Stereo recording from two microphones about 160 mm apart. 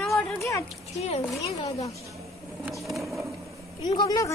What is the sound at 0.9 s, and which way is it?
Speech, 40° left (ahead or behind).